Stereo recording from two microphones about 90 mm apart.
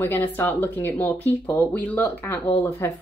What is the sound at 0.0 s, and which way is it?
Speech, 20° left (ahead or behind).